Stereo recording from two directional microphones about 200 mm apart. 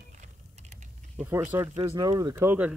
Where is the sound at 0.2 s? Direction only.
35° right (ahead or behind).